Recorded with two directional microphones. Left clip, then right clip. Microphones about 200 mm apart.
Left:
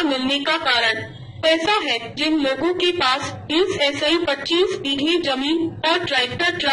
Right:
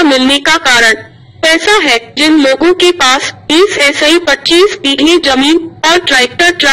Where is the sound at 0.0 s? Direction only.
50° right (ahead or behind).